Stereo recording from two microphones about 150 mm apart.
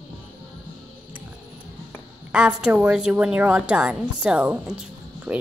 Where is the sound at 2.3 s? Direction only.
5° right (ahead or behind).